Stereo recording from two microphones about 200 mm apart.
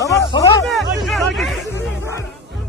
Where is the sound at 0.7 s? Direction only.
Centre (ahead or behind).